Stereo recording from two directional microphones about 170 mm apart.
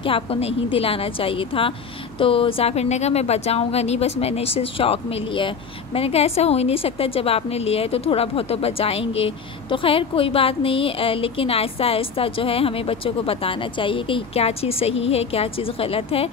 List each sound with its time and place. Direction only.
0.0 s a woman's voice: 35° left (ahead or behind)